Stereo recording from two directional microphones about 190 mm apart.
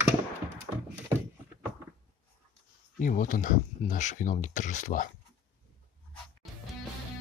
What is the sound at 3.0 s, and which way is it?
Speech, 45° left (ahead or behind).